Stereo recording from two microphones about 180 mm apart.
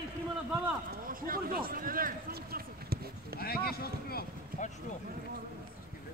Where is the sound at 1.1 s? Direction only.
50° right (ahead or behind).